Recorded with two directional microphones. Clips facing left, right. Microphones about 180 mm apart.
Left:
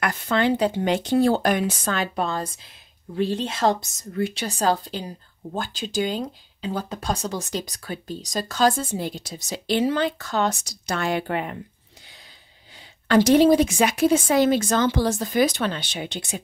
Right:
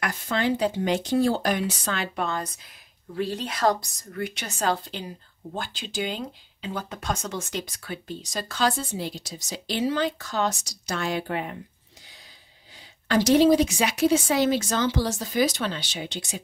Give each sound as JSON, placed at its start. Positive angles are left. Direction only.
{"t": 0.0, "sound": "speech", "side_deg": 60}
{"t": 13.1, "sound": "speech", "side_deg": 55}